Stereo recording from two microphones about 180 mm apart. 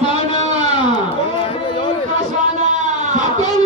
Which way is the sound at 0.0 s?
40° right (ahead or behind).